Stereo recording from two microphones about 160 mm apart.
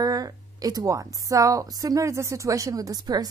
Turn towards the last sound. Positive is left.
turn(degrees=-25)  # may be behind; listen again after turning